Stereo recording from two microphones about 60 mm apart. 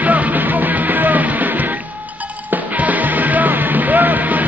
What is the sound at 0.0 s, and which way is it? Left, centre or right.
Music, right.